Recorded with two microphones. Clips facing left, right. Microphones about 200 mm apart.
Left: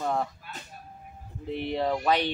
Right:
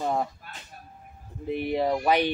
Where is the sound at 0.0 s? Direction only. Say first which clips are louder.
Right 1 dB; 15° right (ahead or behind).